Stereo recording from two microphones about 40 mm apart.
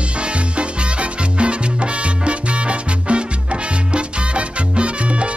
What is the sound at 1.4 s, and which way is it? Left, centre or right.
Salsa music, right.